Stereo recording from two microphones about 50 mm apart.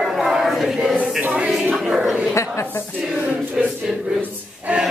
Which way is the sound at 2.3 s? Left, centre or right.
Left.